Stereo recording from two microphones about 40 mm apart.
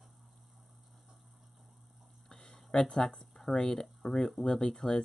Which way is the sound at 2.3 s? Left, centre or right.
Centre.